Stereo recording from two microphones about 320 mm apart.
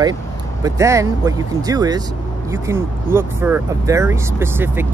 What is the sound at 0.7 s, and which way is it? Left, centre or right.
Speech, centre.